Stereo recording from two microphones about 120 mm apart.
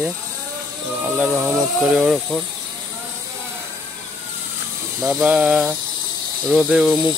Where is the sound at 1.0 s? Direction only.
5° right (ahead or behind).